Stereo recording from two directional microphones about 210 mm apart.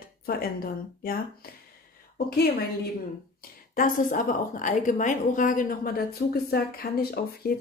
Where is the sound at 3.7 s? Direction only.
40° left (ahead or behind).